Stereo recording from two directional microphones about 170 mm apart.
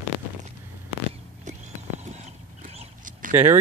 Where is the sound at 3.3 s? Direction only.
15° right (ahead or behind).